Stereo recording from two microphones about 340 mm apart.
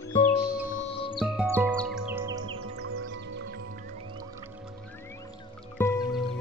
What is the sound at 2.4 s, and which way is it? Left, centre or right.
Music, right.